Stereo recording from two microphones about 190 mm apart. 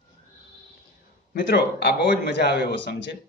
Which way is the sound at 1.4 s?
60° left (ahead or behind).